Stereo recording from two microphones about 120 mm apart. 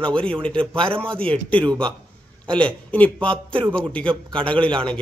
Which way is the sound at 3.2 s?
45° right (ahead or behind).